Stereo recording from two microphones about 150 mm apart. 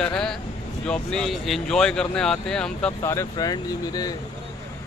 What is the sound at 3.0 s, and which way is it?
Speech, 20° left (ahead or behind).